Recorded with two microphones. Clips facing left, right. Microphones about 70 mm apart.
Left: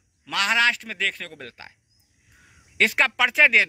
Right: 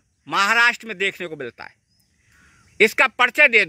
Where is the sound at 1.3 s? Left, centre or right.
Right.